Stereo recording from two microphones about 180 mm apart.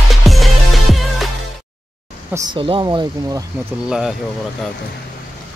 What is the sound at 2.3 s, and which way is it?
Speech, 30° right (ahead or behind).